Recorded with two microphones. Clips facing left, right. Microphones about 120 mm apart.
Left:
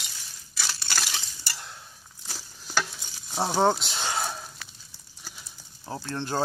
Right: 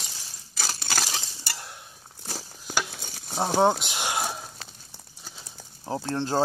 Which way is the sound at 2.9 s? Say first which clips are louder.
Right 5 dB; 55° right (ahead or behind).